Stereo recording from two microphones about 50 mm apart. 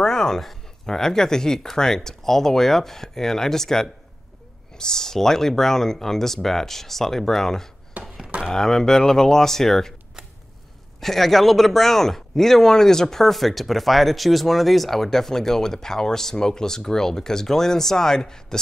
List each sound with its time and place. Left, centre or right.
0.0 s speech: centre
8.0 s a sound: right
8.5 s speech: centre
11.0 s speech: centre